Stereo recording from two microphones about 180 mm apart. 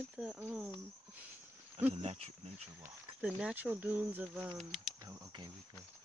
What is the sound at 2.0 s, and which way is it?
Speech, 35° right (ahead or behind).